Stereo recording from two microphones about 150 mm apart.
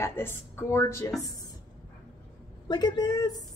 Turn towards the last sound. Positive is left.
turn(degrees=25)  # may be behind; listen again after turning